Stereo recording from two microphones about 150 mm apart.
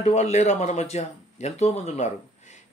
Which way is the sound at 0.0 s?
50° left (ahead or behind).